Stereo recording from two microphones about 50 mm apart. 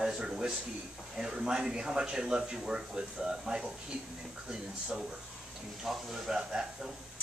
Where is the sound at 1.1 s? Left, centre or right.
Centre.